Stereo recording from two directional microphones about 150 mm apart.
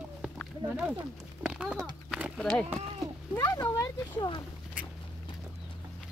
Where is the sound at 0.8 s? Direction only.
10° right (ahead or behind).